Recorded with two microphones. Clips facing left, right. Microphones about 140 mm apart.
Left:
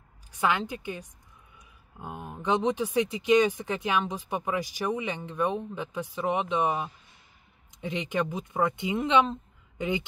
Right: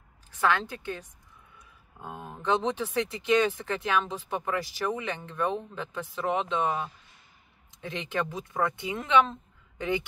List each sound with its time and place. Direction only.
0.4 s speech: 15° left (ahead or behind)